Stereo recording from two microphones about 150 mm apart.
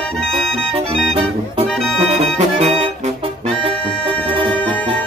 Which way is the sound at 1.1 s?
40° right (ahead or behind).